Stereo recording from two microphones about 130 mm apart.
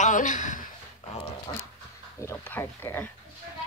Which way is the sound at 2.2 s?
20° left (ahead or behind).